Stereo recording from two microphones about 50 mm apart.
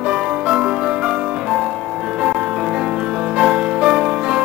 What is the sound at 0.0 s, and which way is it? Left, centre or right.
Music, right.